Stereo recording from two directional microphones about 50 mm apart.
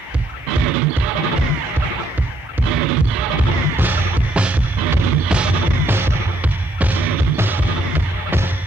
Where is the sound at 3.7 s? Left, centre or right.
Right.